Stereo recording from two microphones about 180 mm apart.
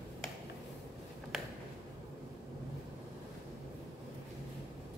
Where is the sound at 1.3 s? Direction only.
Centre (ahead or behind).